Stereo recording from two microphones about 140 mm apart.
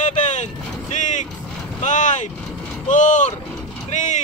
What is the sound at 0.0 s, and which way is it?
Vehicle, 60° left (ahead or behind).